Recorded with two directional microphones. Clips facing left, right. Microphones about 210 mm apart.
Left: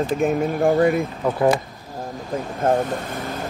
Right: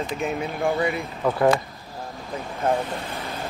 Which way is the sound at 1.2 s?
15° left (ahead or behind).